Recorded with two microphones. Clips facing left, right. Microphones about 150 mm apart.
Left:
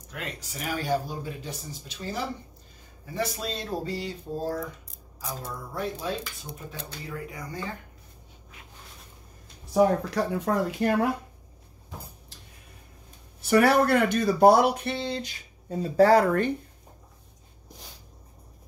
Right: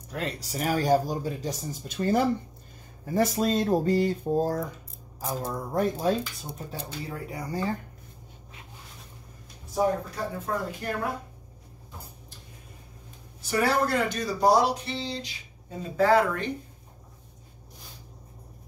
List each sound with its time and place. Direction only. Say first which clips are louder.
0.1 s speech: right 5 dB; 35° right (ahead or behind)
6.7 s speech: right 3 dB; 35° right (ahead or behind)
9.8 s speech: left 4 dB; 85° left
13.4 s speech: left 5 dB; 65° left (ahead or behind)
15.8 s speech: left 3 dB; 40° left (ahead or behind)